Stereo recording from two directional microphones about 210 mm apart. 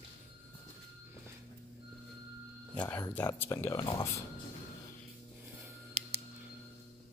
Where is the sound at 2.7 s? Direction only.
5° left (ahead or behind).